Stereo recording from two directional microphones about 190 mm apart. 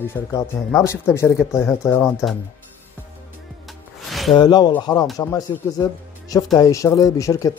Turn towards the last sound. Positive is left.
turn(degrees=15)  # may be behind; listen again after turning